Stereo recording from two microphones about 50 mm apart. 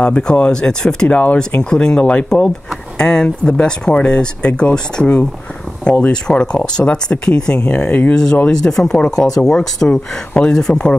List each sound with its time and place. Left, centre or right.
0.0 s speech: centre
1.7 s speech: centre
8.5 s speech: centre